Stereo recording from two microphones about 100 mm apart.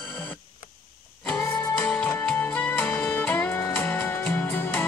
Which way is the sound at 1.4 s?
15° left (ahead or behind).